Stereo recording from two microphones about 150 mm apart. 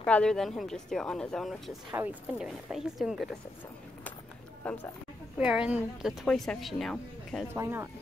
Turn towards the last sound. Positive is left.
turn(degrees=-15)  # may be behind; listen again after turning